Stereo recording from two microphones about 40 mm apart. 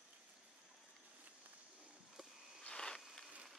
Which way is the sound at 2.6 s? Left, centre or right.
Centre.